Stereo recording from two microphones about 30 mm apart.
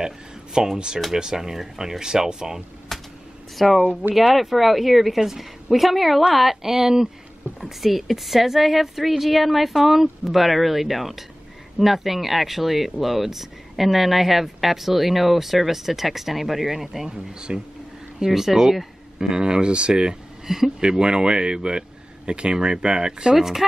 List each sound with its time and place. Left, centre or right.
0.0 s a sound: right
0.7 s speech: right
2.9 s a sound: centre
3.5 s speech: centre
3.8 s speech: right
4.3 s speech: centre
7.6 s speech: centre
17.1 s speech: right
18.2 s speech: centre
19.1 s speech: right
20.4 s speech: centre
21.0 s speech: right
23.3 s speech: centre